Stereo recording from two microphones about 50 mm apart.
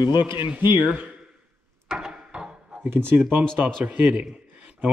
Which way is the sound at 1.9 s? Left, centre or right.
Centre.